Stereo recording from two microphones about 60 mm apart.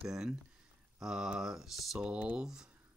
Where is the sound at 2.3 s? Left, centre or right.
Centre.